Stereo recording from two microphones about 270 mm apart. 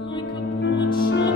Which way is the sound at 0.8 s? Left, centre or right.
Left.